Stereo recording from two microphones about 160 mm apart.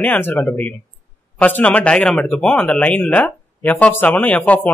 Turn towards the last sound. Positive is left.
turn(degrees=10)  # may be behind; listen again after turning